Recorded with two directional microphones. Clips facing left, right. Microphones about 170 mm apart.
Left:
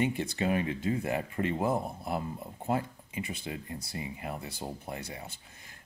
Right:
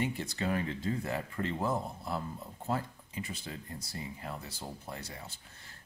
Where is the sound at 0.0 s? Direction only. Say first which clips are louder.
Left 4 dB; 20° left (ahead or behind).